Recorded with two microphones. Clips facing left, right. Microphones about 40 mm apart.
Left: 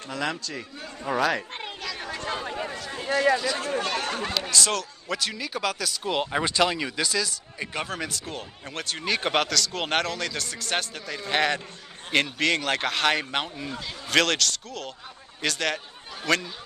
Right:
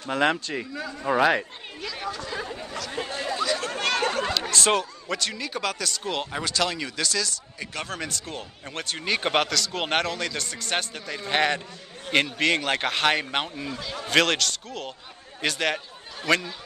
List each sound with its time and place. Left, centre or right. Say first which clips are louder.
0.1 s a man's voice: right 7 dB; right
1.0 s speech: right 3 dB; right
2.0 s chatter: even; left
3.1 s speech: left 13 dB; left
3.6 s chatter: right 1 dB; right
4.5 s a man's voice: even; right
5.0 s speech: even; centre
6.3 s a man's voice: left 4 dB; centre
13.7 s a man's voice: right 1 dB; centre
14.0 s speech: right 1 dB; centre